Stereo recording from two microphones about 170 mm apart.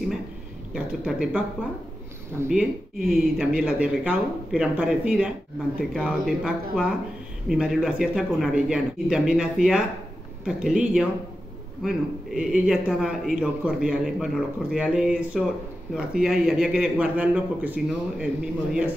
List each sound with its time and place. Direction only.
0.7 s a man's voice: 5° right (ahead or behind)
2.5 s a man's voice: 5° right (ahead or behind)